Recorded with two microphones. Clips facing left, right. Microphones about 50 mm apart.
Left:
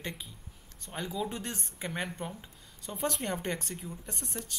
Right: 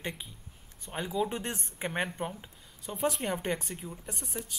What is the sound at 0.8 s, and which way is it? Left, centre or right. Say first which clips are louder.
Speech: right 3 dB; centre.